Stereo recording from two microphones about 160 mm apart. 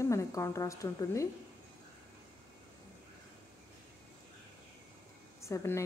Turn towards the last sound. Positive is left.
turn(degrees=15)  # may be behind; listen again after turning